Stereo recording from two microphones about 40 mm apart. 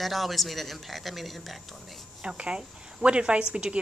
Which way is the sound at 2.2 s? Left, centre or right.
Right.